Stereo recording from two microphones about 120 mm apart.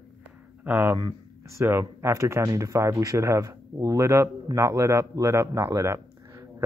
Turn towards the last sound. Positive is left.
turn(degrees=-25)  # may be behind; listen again after turning